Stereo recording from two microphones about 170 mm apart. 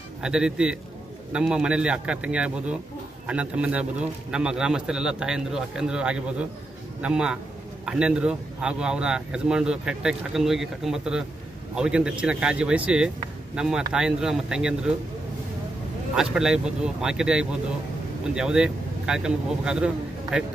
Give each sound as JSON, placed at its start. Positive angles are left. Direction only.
{"t": 0.2, "sound": "a man's voice", "side_deg": -5}
{"t": 16.2, "sound": "a man's voice", "side_deg": -5}